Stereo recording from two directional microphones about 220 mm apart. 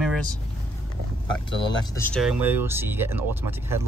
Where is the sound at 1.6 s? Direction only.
20° left (ahead or behind).